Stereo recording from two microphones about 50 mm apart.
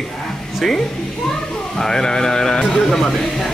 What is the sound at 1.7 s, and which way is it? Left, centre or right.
Speech, centre.